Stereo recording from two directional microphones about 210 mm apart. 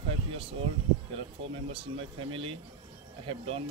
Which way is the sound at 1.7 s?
25° right (ahead or behind).